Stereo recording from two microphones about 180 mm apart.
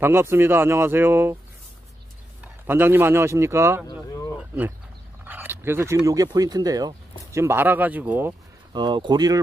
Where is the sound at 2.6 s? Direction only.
10° right (ahead or behind).